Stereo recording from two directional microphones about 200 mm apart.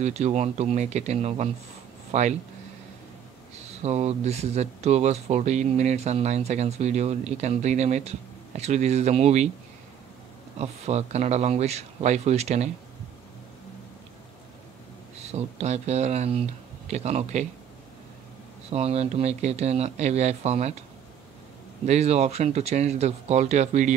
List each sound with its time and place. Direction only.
0.0 s speech: 35° right (ahead or behind)
3.7 s speech: 30° right (ahead or behind)
10.6 s speech: 30° right (ahead or behind)
15.2 s speech: 35° right (ahead or behind)
18.7 s speech: 30° right (ahead or behind)
21.8 s speech: 35° right (ahead or behind)